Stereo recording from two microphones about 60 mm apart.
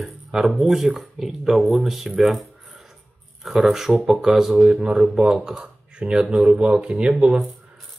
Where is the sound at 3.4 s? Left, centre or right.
Centre; by 7.1 s right.